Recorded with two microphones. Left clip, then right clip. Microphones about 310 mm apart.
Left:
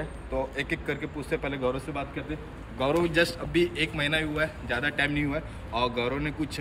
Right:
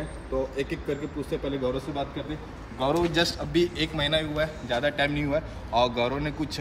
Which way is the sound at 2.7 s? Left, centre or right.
Centre.